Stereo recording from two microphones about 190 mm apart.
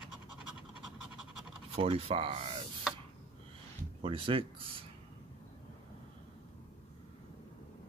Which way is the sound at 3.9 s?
30° right (ahead or behind).